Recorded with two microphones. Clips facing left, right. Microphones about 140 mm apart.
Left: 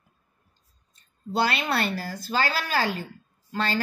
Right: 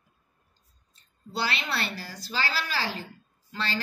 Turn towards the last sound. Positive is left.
turn(degrees=45)  # may be behind; listen again after turning